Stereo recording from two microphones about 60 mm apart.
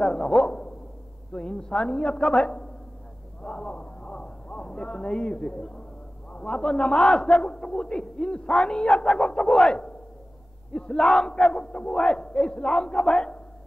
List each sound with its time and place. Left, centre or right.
0.0 s a man's voice: centre